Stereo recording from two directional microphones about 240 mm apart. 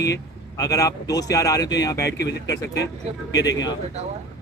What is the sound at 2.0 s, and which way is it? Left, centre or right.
Speech, left.